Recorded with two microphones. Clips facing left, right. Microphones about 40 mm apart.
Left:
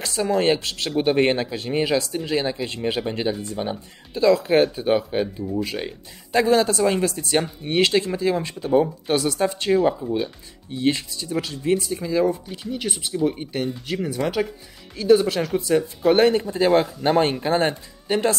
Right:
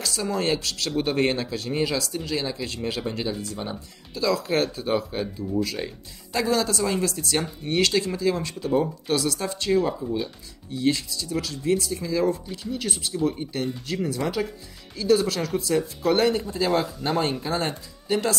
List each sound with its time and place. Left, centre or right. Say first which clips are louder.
0.0 s speech: left 5 dB; left